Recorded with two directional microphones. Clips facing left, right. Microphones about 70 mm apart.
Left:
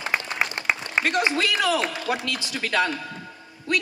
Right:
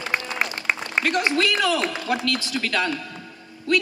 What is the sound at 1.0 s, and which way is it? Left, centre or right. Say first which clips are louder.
A man's voice: right 2 dB; centre.